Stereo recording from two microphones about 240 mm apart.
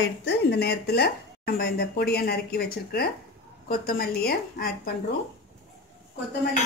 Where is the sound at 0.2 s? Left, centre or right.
Left.